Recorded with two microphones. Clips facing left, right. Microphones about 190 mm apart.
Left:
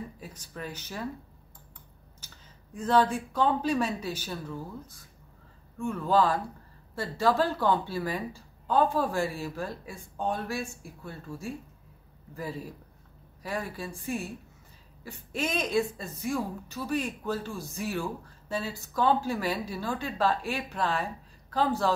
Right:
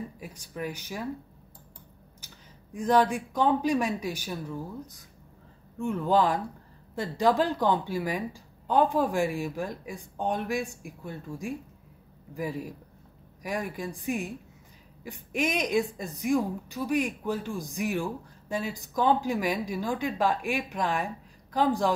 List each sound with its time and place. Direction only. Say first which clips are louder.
0.2 s a woman's voice: right 4 dB; 10° right (ahead or behind)
2.1 s a woman's voice: right 1 dB; 15° right (ahead or behind)